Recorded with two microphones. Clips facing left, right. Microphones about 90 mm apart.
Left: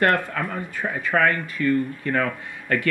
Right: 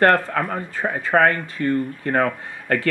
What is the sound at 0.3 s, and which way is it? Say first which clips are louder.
Speech: right 4 dB; 55° right (ahead or behind).